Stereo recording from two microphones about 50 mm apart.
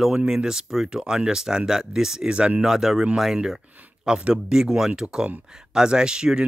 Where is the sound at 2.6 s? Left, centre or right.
Centre.